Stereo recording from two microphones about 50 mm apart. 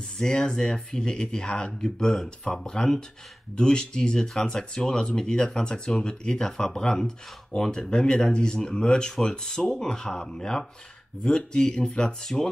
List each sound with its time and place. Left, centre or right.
0.2 s speech: centre